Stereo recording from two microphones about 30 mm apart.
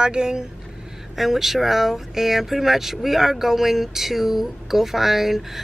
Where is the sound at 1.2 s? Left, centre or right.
Centre.